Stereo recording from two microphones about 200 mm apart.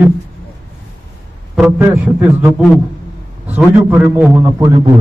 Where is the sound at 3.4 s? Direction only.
10° right (ahead or behind).